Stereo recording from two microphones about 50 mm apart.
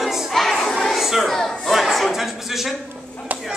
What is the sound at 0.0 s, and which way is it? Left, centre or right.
Crowd, centre.